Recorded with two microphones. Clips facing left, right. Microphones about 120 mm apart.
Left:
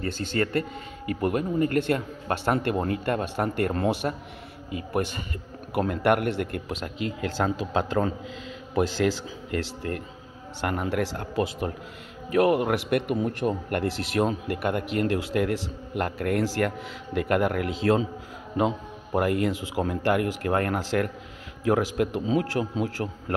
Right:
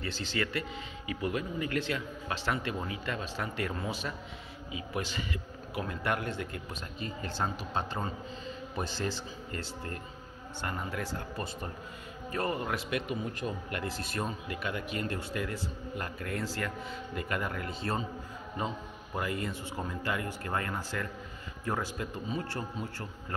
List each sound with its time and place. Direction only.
0.0 s speech: 50° left (ahead or behind); by 4.1 s 65° left (ahead or behind)
4.6 s a man's voice: 55° left (ahead or behind); by 18.0 s 90° left
19.1 s a man's voice: 65° left (ahead or behind); by 23.3 s 90° left